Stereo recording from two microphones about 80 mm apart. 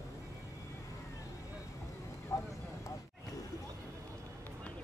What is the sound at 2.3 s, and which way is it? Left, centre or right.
Vehicle, left.